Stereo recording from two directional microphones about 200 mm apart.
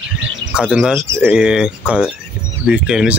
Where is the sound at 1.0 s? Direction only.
10° right (ahead or behind).